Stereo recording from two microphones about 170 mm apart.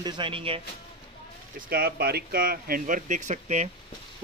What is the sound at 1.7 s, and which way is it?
Speech, 65° right (ahead or behind).